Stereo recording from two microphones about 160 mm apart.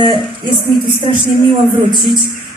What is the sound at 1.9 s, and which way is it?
Speech, centre (ahead or behind).